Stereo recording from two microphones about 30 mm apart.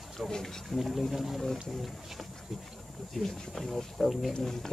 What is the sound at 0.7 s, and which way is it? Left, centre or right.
Speech, centre.